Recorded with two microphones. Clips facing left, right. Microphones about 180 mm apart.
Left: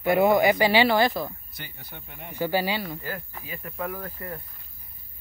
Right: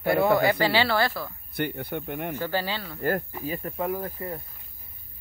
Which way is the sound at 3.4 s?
35° right (ahead or behind).